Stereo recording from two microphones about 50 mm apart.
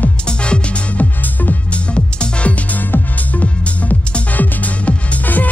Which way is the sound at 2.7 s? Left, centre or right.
Left.